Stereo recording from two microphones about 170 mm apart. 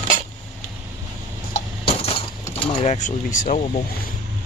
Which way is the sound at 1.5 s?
35° left (ahead or behind).